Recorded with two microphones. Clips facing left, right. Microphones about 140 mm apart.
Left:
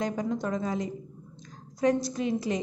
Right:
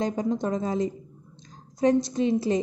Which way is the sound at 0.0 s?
25° right (ahead or behind).